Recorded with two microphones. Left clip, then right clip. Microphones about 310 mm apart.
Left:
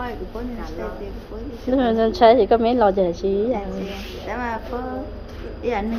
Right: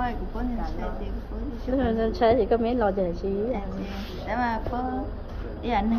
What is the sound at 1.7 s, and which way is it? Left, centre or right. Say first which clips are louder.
Speech: left 7 dB; left.